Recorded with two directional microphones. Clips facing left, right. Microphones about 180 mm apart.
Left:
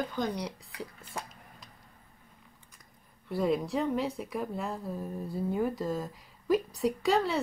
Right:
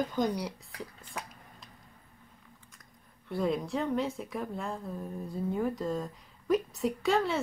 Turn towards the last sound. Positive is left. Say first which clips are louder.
# left 1 dB
turn(degrees=0)  # may be behind; listen again after turning